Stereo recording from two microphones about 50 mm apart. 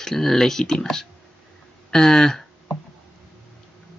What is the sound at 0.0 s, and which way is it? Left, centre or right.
Speech, centre.